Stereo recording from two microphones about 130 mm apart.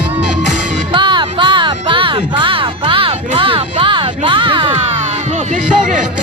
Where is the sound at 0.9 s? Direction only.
40° right (ahead or behind).